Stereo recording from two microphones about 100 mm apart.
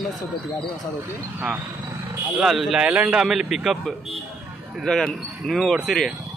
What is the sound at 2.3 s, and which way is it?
Speech, centre (ahead or behind).